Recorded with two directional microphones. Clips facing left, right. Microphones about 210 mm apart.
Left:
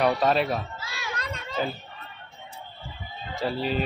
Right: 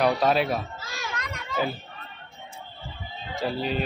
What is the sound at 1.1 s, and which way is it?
Children playing, 30° left (ahead or behind).